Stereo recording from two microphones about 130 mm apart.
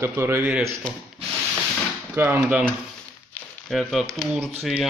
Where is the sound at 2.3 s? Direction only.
10° right (ahead or behind).